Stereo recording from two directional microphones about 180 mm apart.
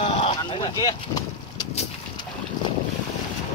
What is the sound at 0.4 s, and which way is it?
Vehicle, 25° left (ahead or behind).